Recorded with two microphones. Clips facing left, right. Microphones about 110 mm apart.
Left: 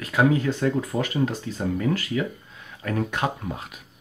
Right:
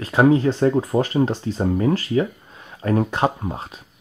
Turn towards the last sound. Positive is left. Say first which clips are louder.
# right 5 dB
turn(degrees=-30)  # may be behind; listen again after turning